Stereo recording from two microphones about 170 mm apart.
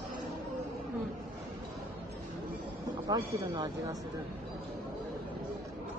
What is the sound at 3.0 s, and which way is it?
Speech, 20° right (ahead or behind).